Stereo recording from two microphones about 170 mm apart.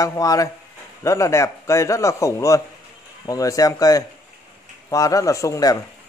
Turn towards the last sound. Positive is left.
turn(degrees=20)  # may be behind; listen again after turning